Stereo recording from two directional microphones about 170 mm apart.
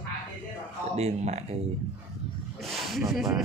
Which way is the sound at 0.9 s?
40° right (ahead or behind).